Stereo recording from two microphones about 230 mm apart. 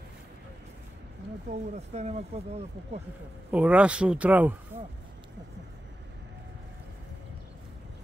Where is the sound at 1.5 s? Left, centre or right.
Right.